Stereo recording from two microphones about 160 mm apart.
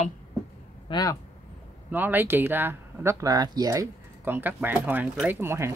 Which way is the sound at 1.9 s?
10° right (ahead or behind).